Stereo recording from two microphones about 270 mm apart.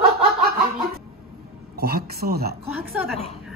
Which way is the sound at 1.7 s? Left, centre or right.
Right.